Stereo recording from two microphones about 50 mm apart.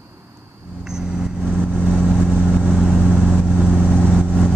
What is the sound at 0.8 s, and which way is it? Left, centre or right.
Vehicle, centre.